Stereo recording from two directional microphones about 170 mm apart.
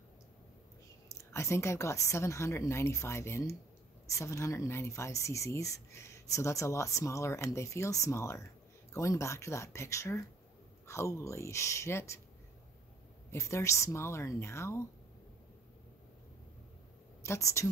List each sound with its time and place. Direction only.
1.0 s speech: 15° left (ahead or behind)
13.3 s speech: 15° left (ahead or behind)
17.2 s a woman's voice: 15° left (ahead or behind)